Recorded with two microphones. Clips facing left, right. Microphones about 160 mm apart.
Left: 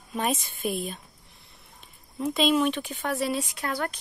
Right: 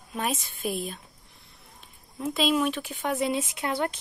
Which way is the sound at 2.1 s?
Centre (ahead or behind).